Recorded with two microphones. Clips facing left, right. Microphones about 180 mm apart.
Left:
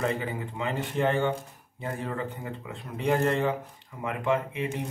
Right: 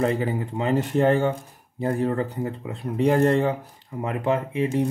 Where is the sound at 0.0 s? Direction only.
35° right (ahead or behind).